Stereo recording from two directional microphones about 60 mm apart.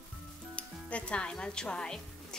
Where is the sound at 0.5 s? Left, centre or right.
Centre.